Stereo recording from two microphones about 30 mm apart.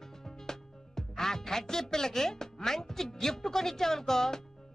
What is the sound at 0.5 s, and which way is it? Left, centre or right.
Music, centre.